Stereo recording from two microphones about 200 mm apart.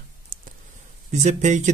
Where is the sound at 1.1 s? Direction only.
35° right (ahead or behind).